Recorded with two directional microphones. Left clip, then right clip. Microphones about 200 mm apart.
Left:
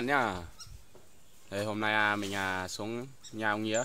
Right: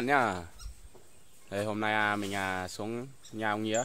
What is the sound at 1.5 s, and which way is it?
Speech, 10° right (ahead or behind).